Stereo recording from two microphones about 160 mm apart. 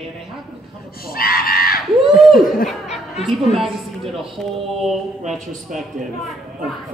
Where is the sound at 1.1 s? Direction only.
70° left (ahead or behind).